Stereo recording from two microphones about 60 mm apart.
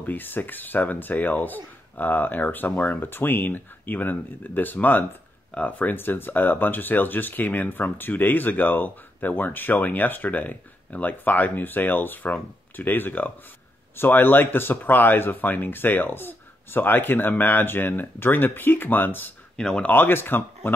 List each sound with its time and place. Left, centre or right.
0.0 s speech: left
5.9 s speech: left
19.5 s speech: centre
19.8 s speech: left